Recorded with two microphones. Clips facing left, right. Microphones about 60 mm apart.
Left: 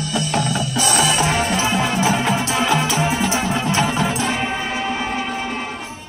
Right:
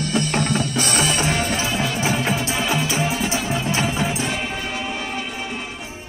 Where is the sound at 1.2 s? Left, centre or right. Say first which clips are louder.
Left 3 dB; left.